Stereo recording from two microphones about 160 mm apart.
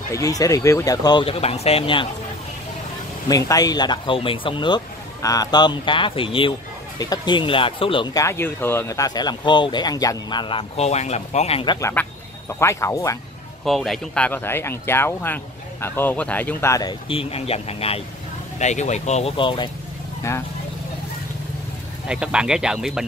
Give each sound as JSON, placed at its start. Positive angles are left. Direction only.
{"t": 0.1, "sound": "speech", "side_deg": 20}
{"t": 3.3, "sound": "speech", "side_deg": 20}
{"t": 11.9, "sound": "speech", "side_deg": 15}
{"t": 13.7, "sound": "speech", "side_deg": 0}
{"t": 17.1, "sound": "speech", "side_deg": 35}
{"t": 22.0, "sound": "speech", "side_deg": -5}